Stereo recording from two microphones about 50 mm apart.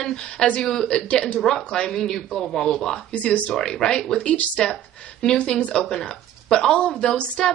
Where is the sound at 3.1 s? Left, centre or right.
Left.